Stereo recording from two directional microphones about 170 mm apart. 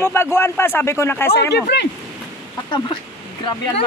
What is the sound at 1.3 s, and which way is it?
Speech, 75° left (ahead or behind).